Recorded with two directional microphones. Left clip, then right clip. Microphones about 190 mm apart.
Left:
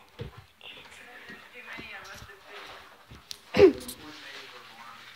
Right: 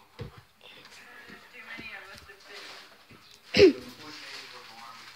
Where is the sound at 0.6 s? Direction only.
10° right (ahead or behind).